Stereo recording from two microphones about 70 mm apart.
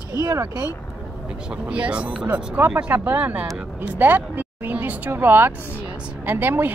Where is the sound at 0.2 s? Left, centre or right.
Right.